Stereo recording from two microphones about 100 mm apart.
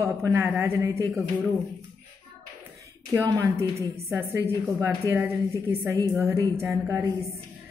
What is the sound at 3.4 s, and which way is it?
A woman's voice, 30° right (ahead or behind).